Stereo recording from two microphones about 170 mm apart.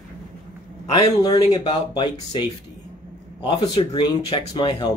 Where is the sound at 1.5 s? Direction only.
25° left (ahead or behind).